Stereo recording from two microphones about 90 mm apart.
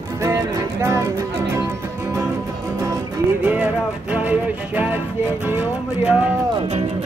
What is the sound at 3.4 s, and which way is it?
Music, 15° right (ahead or behind).